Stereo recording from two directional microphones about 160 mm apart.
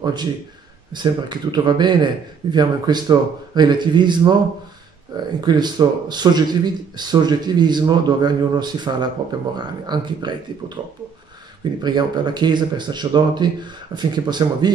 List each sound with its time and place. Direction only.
0.0 s a man's voice: 25° right (ahead or behind)
11.8 s speech: 25° right (ahead or behind)